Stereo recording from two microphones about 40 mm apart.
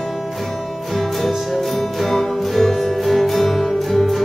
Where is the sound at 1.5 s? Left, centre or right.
Centre.